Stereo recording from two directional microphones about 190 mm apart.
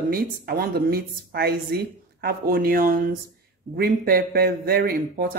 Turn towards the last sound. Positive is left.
turn(degrees=-55)  # may be behind; listen again after turning